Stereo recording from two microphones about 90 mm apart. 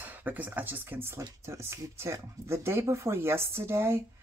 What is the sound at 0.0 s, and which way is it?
A woman's voice, 20° right (ahead or behind).